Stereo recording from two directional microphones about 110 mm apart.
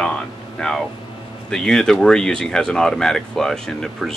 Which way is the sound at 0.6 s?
5° left (ahead or behind).